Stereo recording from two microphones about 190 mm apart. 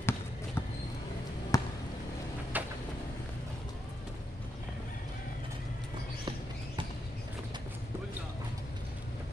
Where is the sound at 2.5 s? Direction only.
10° right (ahead or behind).